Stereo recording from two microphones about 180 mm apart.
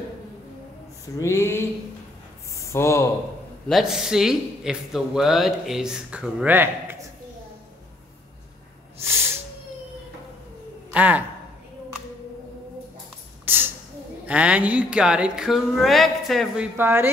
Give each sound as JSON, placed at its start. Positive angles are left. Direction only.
{"t": 1.2, "sound": "a sound", "side_deg": 15}
{"t": 2.6, "sound": "speech", "side_deg": 15}
{"t": 3.6, "sound": "a man's voice", "side_deg": 0}
{"t": 10.9, "sound": "speech", "side_deg": -10}
{"t": 13.5, "sound": "a sound", "side_deg": -10}
{"t": 14.2, "sound": "a man's voice", "side_deg": -5}
{"t": 16.7, "sound": "speech", "side_deg": -10}